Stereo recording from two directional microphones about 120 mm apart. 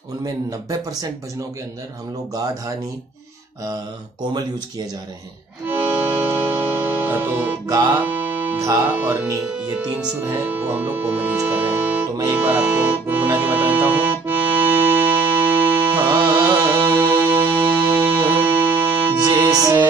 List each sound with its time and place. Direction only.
0.2 s speech: 30° right (ahead or behind)
4.2 s speech: 35° right (ahead or behind)
5.7 s music: 15° right (ahead or behind)
7.6 s speech: 25° right (ahead or behind)
8.1 s music: 15° right (ahead or behind)
8.9 s speech: 15° right (ahead or behind)
9.5 s speech: 5° right (ahead or behind)
10.2 s speech: 20° right (ahead or behind)
12.3 s accordion: 10° right (ahead or behind)
16.4 s music: 15° right (ahead or behind)
19.5 s music: 30° right (ahead or behind)